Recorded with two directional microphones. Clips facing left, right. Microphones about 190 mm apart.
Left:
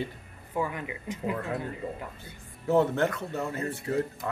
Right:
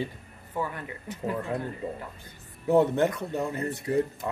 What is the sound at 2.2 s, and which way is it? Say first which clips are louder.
Speech: right 2 dB; 15° right (ahead or behind).